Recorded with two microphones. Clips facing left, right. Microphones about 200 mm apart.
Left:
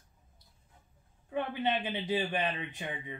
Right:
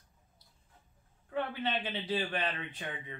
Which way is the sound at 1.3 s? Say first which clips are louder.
Left 2 dB; 15° left (ahead or behind).